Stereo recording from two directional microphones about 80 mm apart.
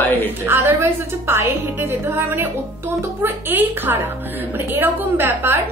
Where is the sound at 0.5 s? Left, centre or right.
Right.